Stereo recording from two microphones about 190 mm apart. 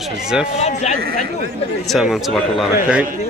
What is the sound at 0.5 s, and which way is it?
Speech, 35° left (ahead or behind).